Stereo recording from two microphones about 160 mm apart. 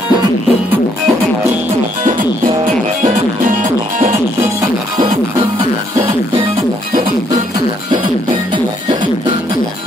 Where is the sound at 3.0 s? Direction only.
50° right (ahead or behind).